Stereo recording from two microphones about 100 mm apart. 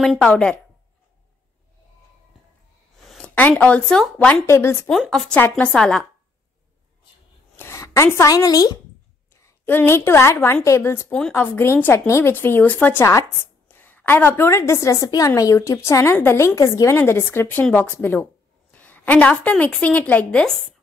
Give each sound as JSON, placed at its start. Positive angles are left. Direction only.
{"t": 0.2, "sound": "speech", "side_deg": 10}
{"t": 3.3, "sound": "speech", "side_deg": 15}
{"t": 4.5, "sound": "a woman's voice", "side_deg": 25}
{"t": 5.3, "sound": "speech", "side_deg": 15}
{"t": 7.5, "sound": "speech", "side_deg": 30}
{"t": 9.3, "sound": "a woman's voice", "side_deg": 20}
{"t": 11.1, "sound": "speech", "side_deg": 10}
{"t": 11.3, "sound": "a woman's voice", "side_deg": 20}